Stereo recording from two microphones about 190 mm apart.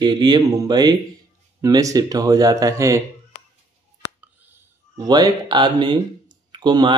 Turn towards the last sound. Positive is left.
turn(degrees=-25)  # may be behind; listen again after turning